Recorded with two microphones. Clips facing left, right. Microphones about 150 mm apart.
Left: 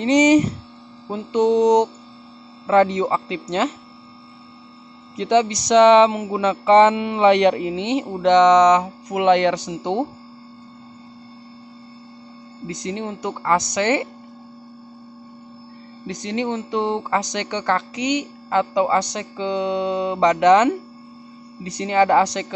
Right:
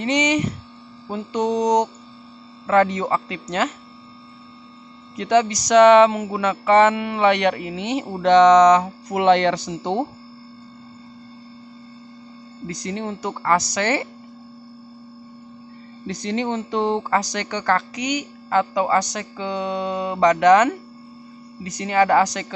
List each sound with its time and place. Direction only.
0.0 s speech: 40° left (ahead or behind)
1.0 s a woman's voice: 25° left (ahead or behind)
5.1 s a woman's voice: 25° left (ahead or behind)
12.6 s a woman's voice: 20° left (ahead or behind)
16.1 s a woman's voice: 15° left (ahead or behind)